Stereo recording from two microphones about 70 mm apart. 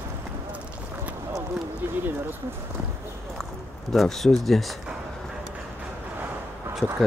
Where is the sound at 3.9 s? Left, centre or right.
Centre.